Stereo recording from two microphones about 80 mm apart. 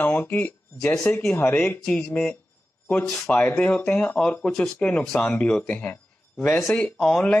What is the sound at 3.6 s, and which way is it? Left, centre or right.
Speech, centre.